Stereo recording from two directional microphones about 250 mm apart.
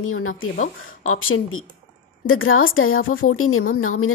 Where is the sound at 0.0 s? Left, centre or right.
Left.